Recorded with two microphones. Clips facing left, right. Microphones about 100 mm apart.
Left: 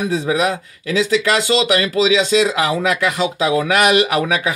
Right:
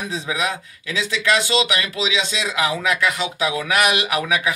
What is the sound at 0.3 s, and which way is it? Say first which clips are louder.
Speech: left 6 dB; 35° left (ahead or behind).